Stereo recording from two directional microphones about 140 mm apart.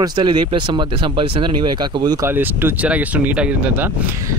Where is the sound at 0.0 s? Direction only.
30° right (ahead or behind).